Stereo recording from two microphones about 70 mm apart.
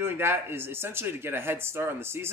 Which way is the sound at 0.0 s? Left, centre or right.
Right.